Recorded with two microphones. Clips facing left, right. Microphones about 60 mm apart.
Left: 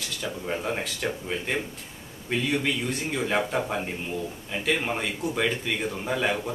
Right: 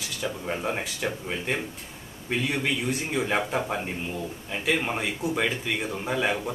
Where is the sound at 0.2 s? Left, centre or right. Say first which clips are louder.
Right 1 dB; centre.